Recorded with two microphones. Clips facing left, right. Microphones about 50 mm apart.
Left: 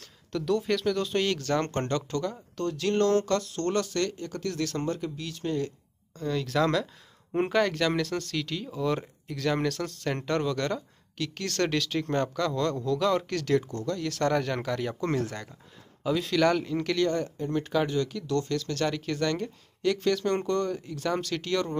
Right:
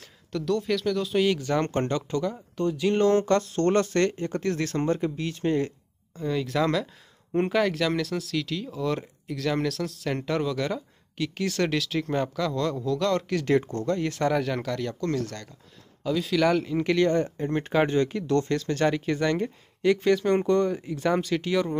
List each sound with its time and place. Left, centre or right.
0.3 s speech: centre; by 5.7 s right
6.1 s speech: centre
13.5 s speech: right
14.2 s speech: centre
15.0 s speech: left
16.0 s speech: centre
16.8 s speech: right
17.4 s speech: right; by 21.7 s centre